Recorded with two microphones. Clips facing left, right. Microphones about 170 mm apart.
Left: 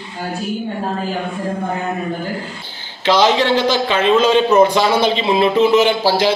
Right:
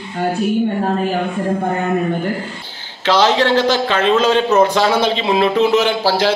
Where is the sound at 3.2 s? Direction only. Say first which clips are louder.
Right 1 dB; 10° left (ahead or behind).